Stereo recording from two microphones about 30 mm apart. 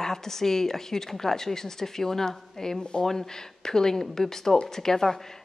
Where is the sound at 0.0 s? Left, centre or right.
Centre.